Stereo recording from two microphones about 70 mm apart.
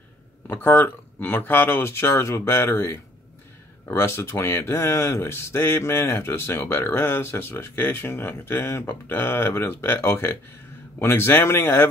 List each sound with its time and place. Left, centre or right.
0.5 s speech: left